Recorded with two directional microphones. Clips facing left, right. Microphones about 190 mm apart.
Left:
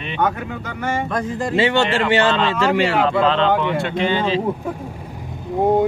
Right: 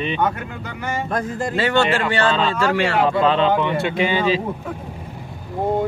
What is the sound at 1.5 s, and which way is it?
Speech, 25° left (ahead or behind).